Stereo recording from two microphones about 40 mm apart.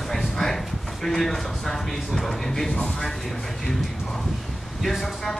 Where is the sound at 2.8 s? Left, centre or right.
Left.